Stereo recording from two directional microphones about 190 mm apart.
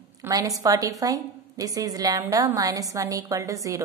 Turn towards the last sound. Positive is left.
turn(degrees=-15)  # may be behind; listen again after turning